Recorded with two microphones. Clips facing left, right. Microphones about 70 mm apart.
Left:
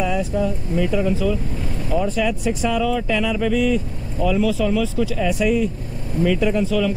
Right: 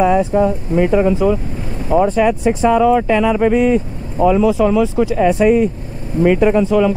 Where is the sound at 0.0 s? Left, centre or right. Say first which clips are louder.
Right 8 dB; right.